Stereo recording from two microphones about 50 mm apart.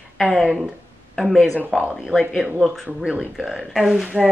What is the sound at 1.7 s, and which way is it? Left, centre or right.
Speech, centre.